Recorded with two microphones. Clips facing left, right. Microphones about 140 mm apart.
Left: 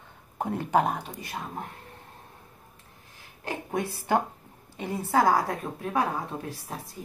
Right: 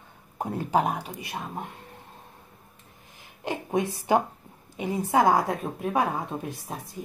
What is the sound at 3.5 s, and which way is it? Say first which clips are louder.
A woman's voice: right 4 dB; 20° right (ahead or behind).